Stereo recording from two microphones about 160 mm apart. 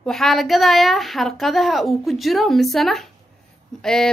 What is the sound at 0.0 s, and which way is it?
A woman's voice, centre (ahead or behind).